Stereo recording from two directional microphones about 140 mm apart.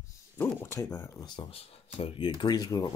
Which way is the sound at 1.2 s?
40° left (ahead or behind).